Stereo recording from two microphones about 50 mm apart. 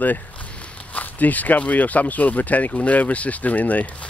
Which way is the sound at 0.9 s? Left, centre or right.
Left.